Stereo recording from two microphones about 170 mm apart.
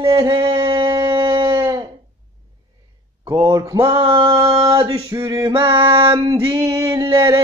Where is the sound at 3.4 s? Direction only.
20° right (ahead or behind).